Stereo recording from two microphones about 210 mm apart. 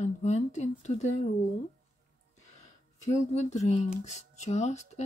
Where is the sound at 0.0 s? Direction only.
35° left (ahead or behind).